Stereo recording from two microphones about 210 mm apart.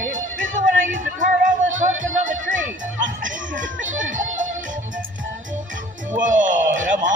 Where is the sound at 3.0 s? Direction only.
40° right (ahead or behind).